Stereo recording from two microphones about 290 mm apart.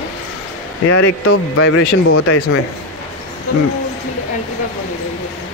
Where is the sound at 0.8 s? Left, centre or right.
Left.